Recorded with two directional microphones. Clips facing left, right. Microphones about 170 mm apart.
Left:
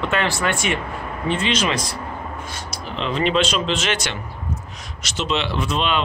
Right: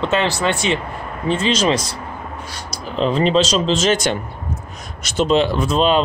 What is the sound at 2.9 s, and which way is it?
Speech, 40° right (ahead or behind).